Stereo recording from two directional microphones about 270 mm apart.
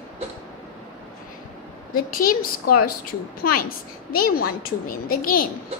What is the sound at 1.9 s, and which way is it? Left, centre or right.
Speech, left.